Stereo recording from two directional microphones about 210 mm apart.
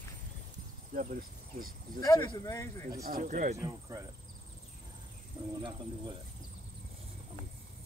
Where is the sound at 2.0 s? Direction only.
15° left (ahead or behind).